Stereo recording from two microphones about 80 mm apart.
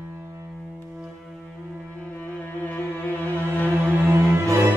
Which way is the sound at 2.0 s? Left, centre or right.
Centre.